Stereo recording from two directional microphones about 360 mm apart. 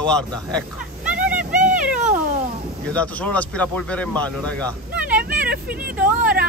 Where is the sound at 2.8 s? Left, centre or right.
Centre.